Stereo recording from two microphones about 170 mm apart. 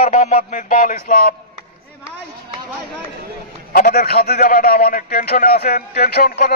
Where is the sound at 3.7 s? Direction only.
55° left (ahead or behind).